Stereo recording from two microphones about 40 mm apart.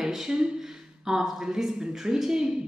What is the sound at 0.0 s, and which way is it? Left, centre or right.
A woman's voice, centre.